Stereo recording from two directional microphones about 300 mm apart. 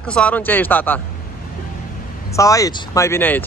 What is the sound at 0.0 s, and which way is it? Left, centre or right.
A man's voice, centre.